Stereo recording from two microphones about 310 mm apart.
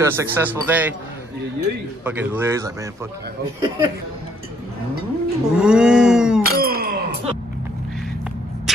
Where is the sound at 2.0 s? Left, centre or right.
Centre.